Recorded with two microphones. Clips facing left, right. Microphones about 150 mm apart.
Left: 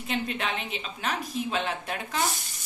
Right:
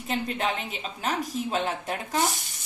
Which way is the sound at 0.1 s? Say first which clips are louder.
Right 2 dB; 40° right (ahead or behind).